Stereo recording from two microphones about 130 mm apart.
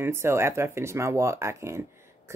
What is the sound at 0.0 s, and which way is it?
Speech, 20° right (ahead or behind).